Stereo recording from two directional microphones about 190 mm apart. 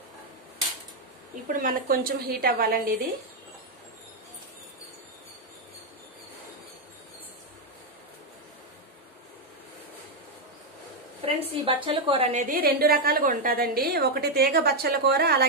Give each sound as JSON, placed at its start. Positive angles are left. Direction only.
{"t": 1.3, "sound": "a woman's voice", "side_deg": -45}
{"t": 11.2, "sound": "a woman's voice", "side_deg": -30}